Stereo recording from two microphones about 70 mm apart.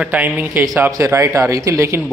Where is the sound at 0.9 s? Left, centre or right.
Right.